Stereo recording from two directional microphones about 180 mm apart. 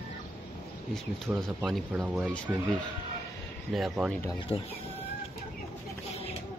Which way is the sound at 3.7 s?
Centre (ahead or behind).